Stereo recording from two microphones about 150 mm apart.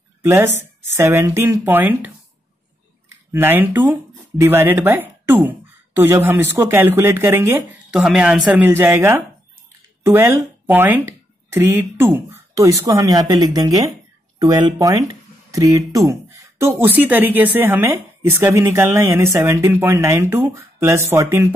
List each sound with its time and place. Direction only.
0.2 s a woman's voice: 15° right (ahead or behind)
3.3 s a woman's voice: 15° right (ahead or behind)
7.9 s a woman's voice: 5° right (ahead or behind)